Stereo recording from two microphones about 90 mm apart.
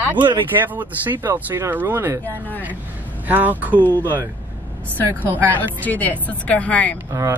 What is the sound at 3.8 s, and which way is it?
A woman's voice, 20° left (ahead or behind).